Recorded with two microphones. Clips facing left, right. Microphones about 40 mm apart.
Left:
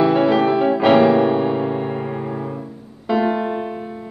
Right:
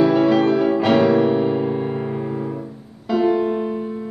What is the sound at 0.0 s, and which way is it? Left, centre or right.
Music, centre.